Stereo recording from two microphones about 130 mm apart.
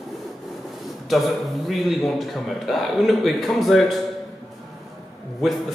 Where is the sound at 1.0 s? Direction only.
Centre (ahead or behind).